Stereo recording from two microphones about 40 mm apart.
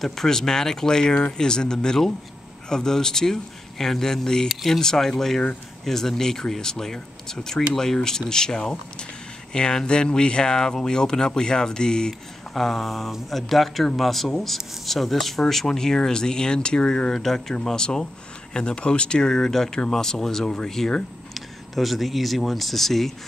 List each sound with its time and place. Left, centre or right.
0.0 s speech: centre
12.5 s speech: centre; by 17.1 s left
17.1 s speech: centre